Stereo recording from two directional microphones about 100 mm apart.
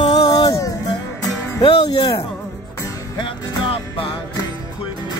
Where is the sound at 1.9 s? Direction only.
50° left (ahead or behind).